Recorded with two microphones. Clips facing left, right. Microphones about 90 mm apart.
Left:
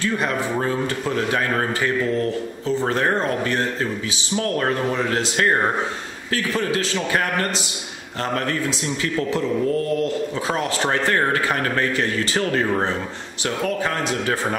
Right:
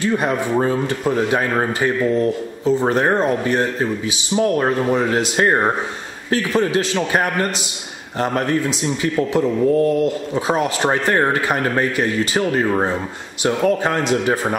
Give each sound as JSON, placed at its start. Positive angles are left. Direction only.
{"t": 0.0, "sound": "a man's voice", "side_deg": -20}